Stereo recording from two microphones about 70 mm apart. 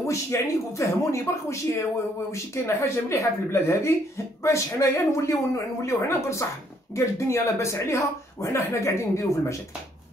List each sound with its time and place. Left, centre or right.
0.0 s speech: left